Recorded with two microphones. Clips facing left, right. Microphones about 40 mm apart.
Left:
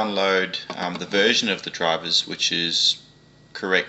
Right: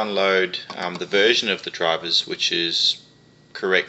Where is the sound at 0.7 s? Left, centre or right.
Centre.